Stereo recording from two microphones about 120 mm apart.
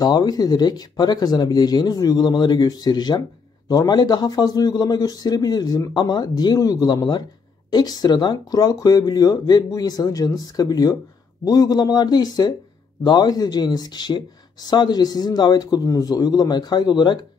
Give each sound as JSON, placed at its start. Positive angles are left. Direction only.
{"t": 0.0, "sound": "speech", "side_deg": 35}